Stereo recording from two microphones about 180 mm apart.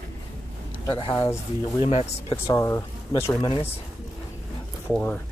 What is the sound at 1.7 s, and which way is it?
Speech, 35° left (ahead or behind).